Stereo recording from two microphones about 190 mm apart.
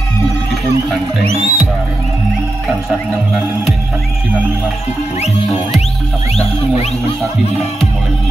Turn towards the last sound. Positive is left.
turn(degrees=35)  # may be behind; listen again after turning